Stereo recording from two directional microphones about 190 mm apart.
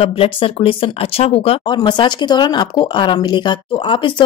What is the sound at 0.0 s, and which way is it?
Speech, 30° left (ahead or behind).